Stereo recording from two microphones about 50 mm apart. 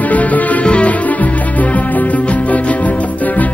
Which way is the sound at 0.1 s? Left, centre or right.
Left.